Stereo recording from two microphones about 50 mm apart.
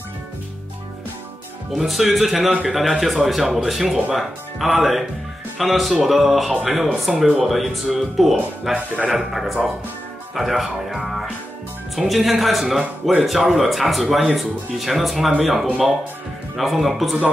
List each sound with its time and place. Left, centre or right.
1.7 s speech: centre
8.7 s speech: right
9.1 s speech: centre